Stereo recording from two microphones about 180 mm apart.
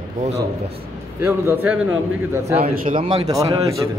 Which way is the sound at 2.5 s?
30° right (ahead or behind).